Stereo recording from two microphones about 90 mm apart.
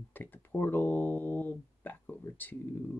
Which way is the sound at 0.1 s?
20° left (ahead or behind).